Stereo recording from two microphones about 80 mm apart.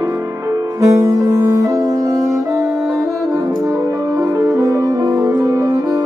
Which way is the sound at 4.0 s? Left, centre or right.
Right.